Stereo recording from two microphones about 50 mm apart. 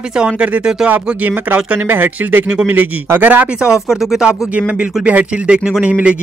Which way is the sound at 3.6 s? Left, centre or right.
Centre.